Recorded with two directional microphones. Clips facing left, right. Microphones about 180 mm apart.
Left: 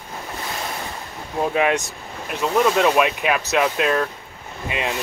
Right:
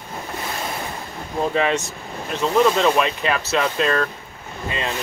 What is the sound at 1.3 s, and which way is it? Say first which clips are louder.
Speech: left 1 dB; 10° left (ahead or behind).